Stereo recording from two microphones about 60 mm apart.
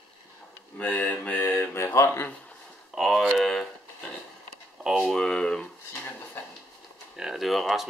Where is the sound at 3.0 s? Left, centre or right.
Centre.